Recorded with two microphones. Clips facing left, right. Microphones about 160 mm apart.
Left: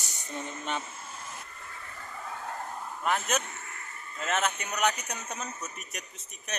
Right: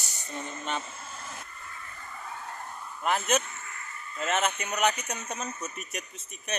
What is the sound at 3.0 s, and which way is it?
Speech, centre (ahead or behind).